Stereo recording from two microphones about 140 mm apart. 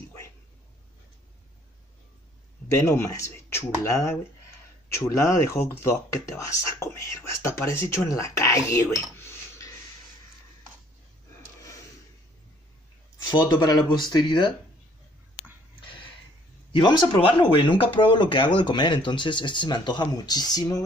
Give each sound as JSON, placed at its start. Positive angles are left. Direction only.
{"t": 2.7, "sound": "speech", "side_deg": 20}
{"t": 13.3, "sound": "speech", "side_deg": 30}
{"t": 15.8, "sound": "a sound", "side_deg": 35}
{"t": 16.7, "sound": "speech", "side_deg": 35}